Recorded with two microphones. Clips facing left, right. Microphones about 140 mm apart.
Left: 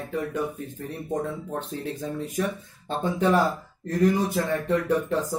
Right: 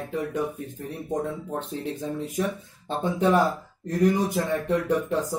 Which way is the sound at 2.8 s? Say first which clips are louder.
Even; 20° right (ahead or behind).